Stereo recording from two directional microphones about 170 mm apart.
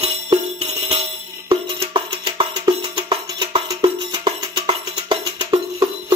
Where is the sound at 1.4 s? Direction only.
30° right (ahead or behind).